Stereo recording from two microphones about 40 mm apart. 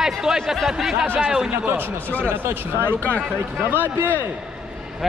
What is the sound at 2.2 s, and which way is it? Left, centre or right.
A man's voice, right.